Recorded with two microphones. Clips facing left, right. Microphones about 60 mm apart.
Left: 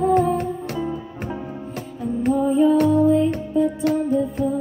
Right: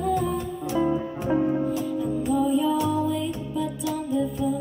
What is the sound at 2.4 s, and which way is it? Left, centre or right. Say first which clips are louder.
Music: left 6 dB; left.